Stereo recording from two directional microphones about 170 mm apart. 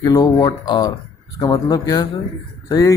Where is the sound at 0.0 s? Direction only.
20° left (ahead or behind).